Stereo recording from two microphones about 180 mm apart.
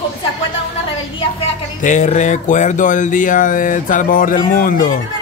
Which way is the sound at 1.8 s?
45° left (ahead or behind).